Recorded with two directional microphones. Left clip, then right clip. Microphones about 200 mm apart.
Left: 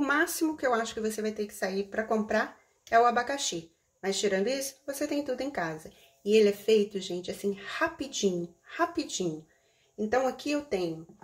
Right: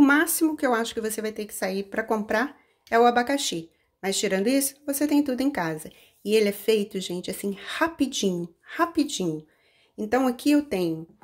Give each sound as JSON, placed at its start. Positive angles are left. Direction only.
{"t": 0.0, "sound": "speech", "side_deg": -45}